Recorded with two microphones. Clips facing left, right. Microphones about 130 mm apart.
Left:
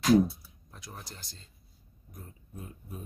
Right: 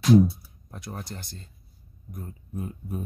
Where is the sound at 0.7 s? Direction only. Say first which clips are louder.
Right 9 dB; 60° right (ahead or behind).